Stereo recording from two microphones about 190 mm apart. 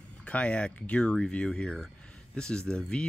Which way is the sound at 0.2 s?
5° left (ahead or behind).